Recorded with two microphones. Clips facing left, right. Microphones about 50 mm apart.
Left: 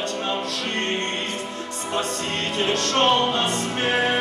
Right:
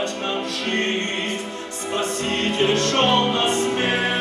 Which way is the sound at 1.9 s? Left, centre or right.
Right.